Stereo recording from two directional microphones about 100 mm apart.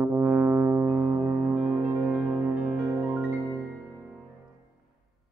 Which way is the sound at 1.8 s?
30° right (ahead or behind).